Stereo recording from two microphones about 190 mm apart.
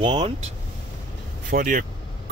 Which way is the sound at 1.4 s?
45° right (ahead or behind).